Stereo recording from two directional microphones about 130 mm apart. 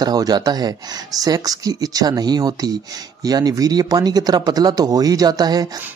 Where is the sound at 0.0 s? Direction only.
30° right (ahead or behind).